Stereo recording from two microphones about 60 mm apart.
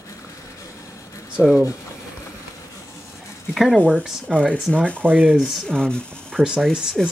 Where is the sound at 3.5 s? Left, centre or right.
Centre.